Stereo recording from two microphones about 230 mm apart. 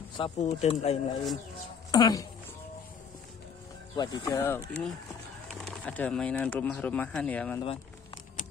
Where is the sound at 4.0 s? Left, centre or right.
Centre.